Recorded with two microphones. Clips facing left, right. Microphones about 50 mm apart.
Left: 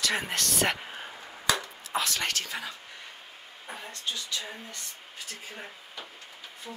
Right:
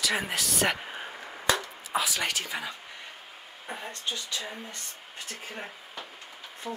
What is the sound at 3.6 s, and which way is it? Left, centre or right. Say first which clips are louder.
Speech: right 2 dB; right.